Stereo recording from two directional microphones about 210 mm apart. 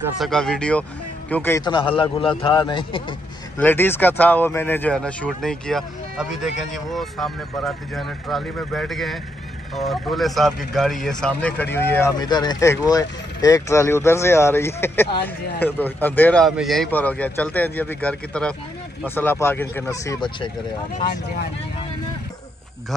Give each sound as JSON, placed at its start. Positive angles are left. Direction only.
{"t": 0.2, "sound": "speech", "side_deg": 0}
{"t": 1.6, "sound": "a man's voice", "side_deg": 25}
{"t": 3.5, "sound": "speech", "side_deg": 10}